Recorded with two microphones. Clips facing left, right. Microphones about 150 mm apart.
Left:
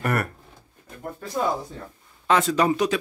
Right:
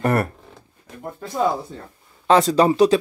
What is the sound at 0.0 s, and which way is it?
Speech, 30° right (ahead or behind).